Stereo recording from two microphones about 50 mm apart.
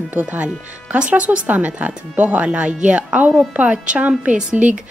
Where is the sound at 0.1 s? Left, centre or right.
Right.